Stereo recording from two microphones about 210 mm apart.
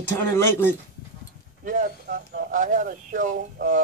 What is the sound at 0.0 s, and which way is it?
Speech, 10° left (ahead or behind).